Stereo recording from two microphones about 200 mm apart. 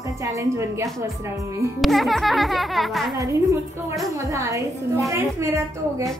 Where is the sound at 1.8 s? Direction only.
Centre (ahead or behind).